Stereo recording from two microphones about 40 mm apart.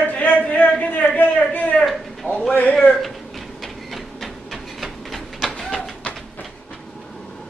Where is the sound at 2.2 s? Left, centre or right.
Left.